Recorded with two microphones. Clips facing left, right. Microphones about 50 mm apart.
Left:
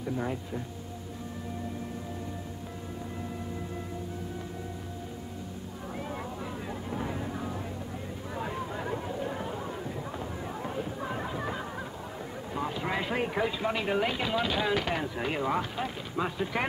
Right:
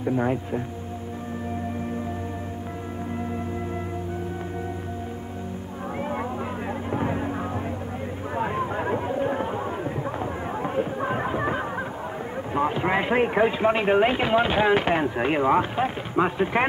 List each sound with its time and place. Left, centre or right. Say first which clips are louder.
0.0 s speech: right 9 dB; right
5.9 s music: right 9 dB; right
6.9 s vehicle: right 8 dB; right
8.4 s a sound: right 9 dB; right
12.5 s speech: right 9 dB; right